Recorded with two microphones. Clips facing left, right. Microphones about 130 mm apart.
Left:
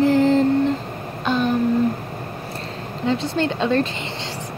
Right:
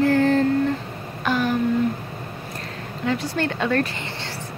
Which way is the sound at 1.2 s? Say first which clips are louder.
Left 2 dB; 25° left (ahead or behind).